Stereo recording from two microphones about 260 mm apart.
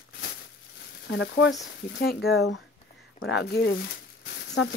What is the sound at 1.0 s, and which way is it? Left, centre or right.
Speech, left.